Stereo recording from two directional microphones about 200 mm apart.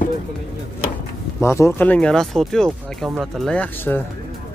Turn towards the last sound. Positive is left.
turn(degrees=10)  # may be behind; listen again after turning